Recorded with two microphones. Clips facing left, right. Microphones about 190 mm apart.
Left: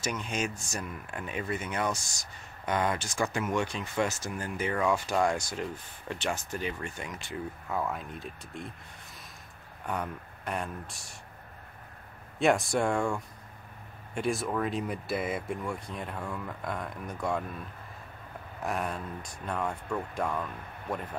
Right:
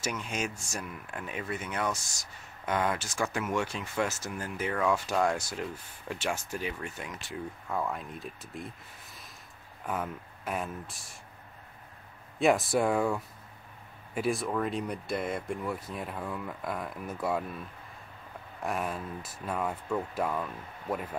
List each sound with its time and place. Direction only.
0.0 s speech: 5° right (ahead or behind)
9.8 s speech: centre (ahead or behind)
12.4 s speech: centre (ahead or behind)